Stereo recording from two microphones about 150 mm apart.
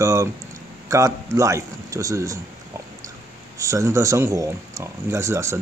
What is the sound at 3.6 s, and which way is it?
Speech, 20° right (ahead or behind).